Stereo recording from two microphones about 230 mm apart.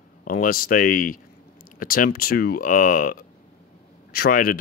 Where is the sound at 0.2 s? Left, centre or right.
Left.